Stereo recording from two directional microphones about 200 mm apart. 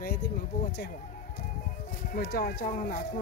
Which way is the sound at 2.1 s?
50° left (ahead or behind).